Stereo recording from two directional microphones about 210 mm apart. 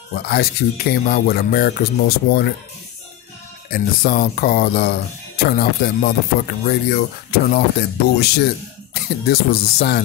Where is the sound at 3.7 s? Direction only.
40° left (ahead or behind).